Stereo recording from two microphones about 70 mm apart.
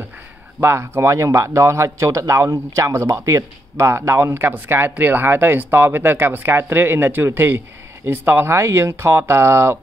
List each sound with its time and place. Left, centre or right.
0.6 s speech: right
3.7 s speech: right
8.5 s speech: right